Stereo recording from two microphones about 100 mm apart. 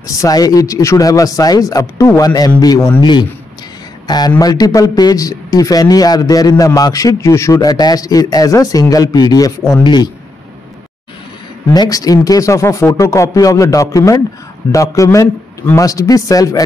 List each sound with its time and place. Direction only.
0.0 s a man's voice: 35° left (ahead or behind)
4.4 s a man's voice: 40° left (ahead or behind)
7.5 s a man's voice: 40° left (ahead or behind)
11.7 s a man's voice: 40° left (ahead or behind)